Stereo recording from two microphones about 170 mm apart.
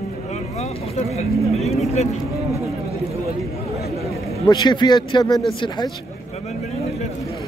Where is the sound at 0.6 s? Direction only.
40° left (ahead or behind).